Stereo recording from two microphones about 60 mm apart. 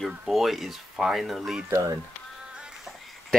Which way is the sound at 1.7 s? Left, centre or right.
Right.